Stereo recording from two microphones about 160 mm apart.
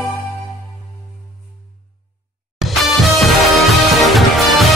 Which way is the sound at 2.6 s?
Centre (ahead or behind).